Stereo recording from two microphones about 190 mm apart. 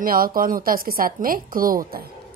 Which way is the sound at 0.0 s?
50° right (ahead or behind).